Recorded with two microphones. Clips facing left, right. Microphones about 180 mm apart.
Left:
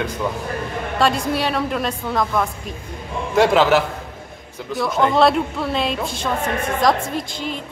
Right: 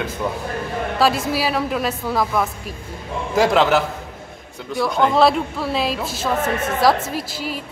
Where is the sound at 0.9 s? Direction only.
5° right (ahead or behind).